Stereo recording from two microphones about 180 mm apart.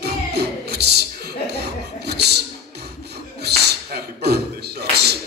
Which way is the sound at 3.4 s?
65° right (ahead or behind).